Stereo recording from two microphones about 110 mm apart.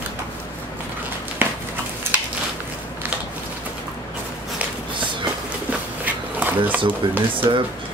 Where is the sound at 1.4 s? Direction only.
20° right (ahead or behind).